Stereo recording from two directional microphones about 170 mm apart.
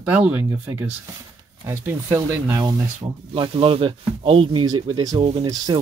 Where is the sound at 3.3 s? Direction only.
30° right (ahead or behind).